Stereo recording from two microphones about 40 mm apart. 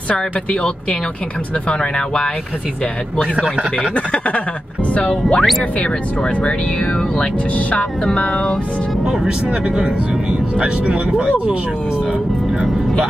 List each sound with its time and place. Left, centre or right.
1.7 s speech: left
3.3 s speech: right
3.9 s speech: left
8.0 s speech: left
10.6 s speech: right